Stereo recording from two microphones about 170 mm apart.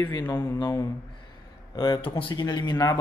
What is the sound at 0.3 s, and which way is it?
A man's voice, 15° left (ahead or behind).